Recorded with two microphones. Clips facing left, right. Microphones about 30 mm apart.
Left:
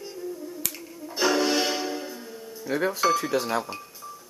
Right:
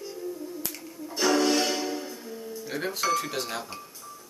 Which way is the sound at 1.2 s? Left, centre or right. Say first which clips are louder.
Even; centre.